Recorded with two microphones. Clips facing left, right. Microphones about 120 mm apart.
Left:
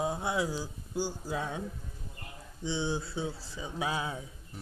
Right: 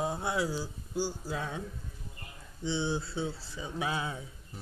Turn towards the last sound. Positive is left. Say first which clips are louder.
# even
turn(degrees=10)  # may be behind; listen again after turning